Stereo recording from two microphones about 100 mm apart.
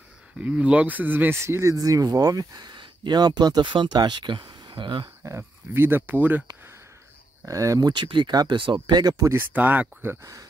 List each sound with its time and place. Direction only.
0.4 s speech: 15° right (ahead or behind); by 5.1 s 50° right (ahead or behind)
5.2 s speech: 25° right (ahead or behind)
7.4 s speech: 35° right (ahead or behind)
7.9 s speech: 50° right (ahead or behind)
9.1 s speech: 25° right (ahead or behind)